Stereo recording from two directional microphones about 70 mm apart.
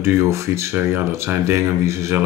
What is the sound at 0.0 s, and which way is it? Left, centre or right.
Speech, right.